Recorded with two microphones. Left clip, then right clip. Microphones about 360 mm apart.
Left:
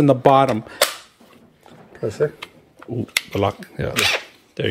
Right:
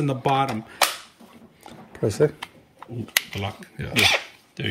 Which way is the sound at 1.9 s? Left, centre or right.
Right.